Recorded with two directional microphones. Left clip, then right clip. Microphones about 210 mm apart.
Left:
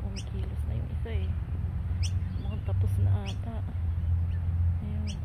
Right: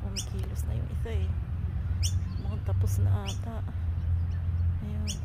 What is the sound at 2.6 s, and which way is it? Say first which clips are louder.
Speech: right 1 dB; 15° right (ahead or behind).